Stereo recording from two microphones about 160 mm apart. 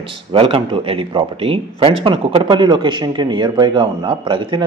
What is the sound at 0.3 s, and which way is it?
Speech, 35° right (ahead or behind).